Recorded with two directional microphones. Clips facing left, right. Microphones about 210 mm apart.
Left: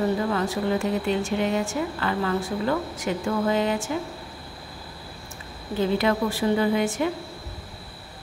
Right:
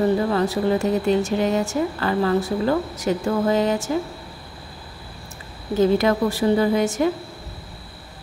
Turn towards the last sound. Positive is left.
turn(degrees=-40)  # may be behind; listen again after turning